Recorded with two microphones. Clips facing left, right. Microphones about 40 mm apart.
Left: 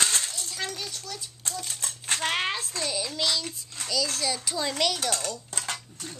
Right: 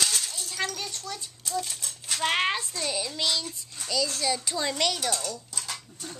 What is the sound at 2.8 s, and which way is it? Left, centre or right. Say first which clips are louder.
A child's voice: left 2 dB; centre.